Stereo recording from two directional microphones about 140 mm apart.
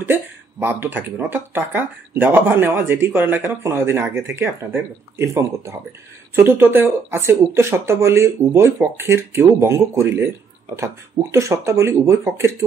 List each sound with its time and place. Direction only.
0.0 s speech: 15° right (ahead or behind)
11.3 s speech: 20° right (ahead or behind)